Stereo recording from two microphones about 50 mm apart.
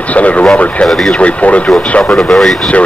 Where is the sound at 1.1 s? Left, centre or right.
Left.